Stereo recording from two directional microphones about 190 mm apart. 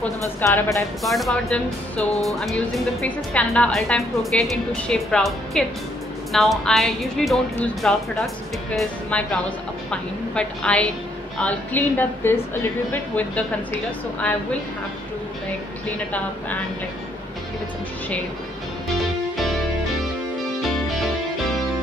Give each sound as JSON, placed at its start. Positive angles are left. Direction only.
{"t": 0.4, "sound": "a woman's voice", "side_deg": 15}
{"t": 1.0, "sound": "a woman's voice", "side_deg": 0}
{"t": 18.9, "sound": "music", "side_deg": 0}
{"t": 20.6, "sound": "music", "side_deg": 0}